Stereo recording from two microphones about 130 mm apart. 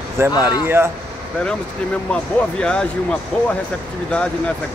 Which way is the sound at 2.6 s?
5° left (ahead or behind).